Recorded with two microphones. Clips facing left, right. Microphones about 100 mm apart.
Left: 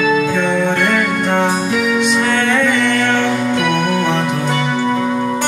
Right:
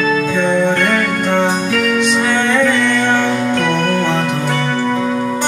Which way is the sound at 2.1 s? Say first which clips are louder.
Right 1 dB; 20° right (ahead or behind).